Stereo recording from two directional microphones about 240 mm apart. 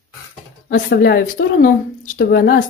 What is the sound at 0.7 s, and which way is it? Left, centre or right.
Speech, left.